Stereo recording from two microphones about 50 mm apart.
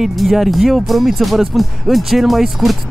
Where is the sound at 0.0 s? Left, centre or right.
Centre.